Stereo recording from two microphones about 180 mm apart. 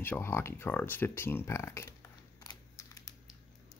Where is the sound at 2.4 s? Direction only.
20° left (ahead or behind).